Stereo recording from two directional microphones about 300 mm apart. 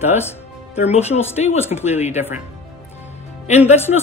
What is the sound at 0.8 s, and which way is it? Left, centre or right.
Speech, left.